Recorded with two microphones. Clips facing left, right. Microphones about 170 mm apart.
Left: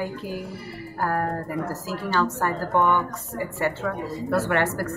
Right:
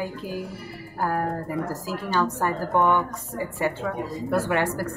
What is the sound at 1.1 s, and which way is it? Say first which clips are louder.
Speech: even; 15° right (ahead or behind).